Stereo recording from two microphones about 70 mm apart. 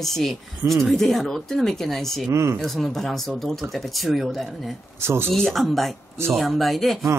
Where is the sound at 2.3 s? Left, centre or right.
Right.